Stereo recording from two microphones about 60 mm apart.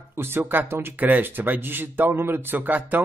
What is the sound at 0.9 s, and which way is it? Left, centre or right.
A man's voice, right.